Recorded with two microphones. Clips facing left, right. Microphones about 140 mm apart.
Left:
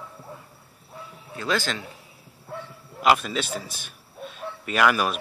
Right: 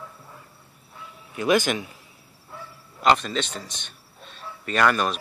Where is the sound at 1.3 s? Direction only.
15° right (ahead or behind).